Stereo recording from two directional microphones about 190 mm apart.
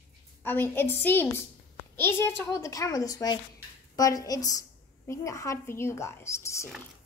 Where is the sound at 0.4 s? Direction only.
10° left (ahead or behind).